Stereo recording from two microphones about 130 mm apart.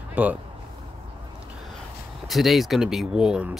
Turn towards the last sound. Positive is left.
turn(degrees=-5)  # may be behind; listen again after turning